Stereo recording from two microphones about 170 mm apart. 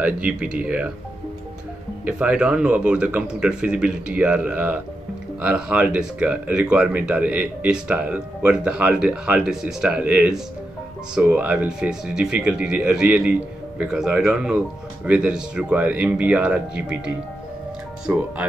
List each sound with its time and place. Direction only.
0.0 s speech: 5° right (ahead or behind)
2.0 s speech: 10° right (ahead or behind)
18.1 s speech: 15° right (ahead or behind)